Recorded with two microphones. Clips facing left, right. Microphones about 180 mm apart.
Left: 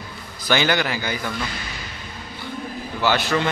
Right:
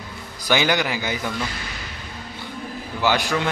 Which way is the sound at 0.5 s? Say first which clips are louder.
Even; 15° right (ahead or behind).